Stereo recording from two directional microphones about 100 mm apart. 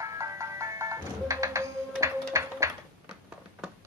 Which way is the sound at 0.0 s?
30° right (ahead or behind).